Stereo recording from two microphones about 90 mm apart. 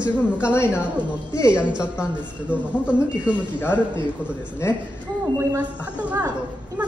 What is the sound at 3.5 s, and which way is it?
Speech, 20° left (ahead or behind).